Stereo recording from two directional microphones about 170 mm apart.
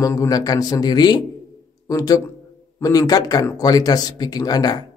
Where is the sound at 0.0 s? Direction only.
20° left (ahead or behind).